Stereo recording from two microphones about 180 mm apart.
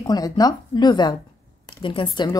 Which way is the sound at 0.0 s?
20° left (ahead or behind).